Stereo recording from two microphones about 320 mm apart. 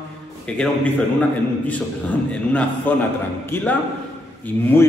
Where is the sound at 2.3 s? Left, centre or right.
Centre.